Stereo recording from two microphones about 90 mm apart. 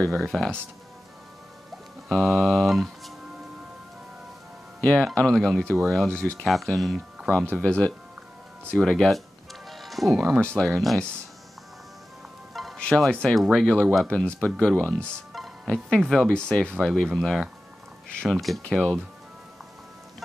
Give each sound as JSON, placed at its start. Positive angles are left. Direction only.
{"t": 0.0, "sound": "speech", "side_deg": 5}
{"t": 2.0, "sound": "speech", "side_deg": 10}
{"t": 4.8, "sound": "speech", "side_deg": 10}
{"t": 6.4, "sound": "speech", "side_deg": 0}
{"t": 7.2, "sound": "speech", "side_deg": 10}
{"t": 9.7, "sound": "music", "side_deg": 0}
{"t": 10.1, "sound": "speech", "side_deg": -20}
{"t": 10.4, "sound": "speech", "side_deg": 10}
{"t": 12.7, "sound": "fowl", "side_deg": 10}
{"t": 13.0, "sound": "speech", "side_deg": 5}